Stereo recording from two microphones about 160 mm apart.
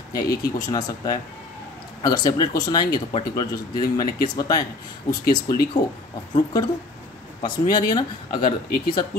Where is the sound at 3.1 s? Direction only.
35° left (ahead or behind).